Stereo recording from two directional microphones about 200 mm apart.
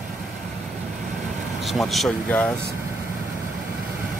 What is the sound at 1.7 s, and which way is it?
Speech, centre (ahead or behind).